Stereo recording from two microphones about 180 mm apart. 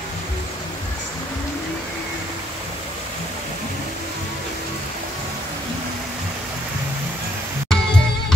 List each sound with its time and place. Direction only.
7.7 s music: 5° left (ahead or behind)